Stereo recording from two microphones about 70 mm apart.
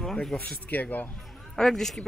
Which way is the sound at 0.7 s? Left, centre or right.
Left.